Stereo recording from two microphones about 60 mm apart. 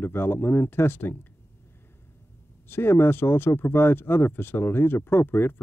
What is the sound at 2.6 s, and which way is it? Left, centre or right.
Speech, left.